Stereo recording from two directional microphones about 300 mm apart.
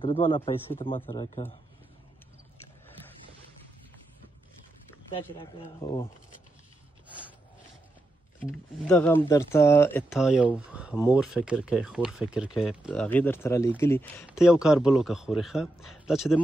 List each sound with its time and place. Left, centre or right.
0.0 s speech: centre
5.2 s speech: centre
7.1 s rub: centre
8.8 s speech: centre